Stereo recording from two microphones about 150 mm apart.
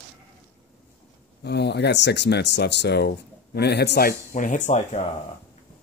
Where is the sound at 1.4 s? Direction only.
90° left.